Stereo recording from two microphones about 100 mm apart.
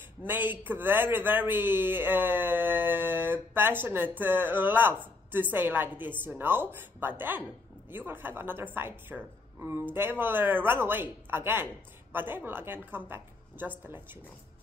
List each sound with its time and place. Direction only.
0.2 s a man's voice: 20° right (ahead or behind)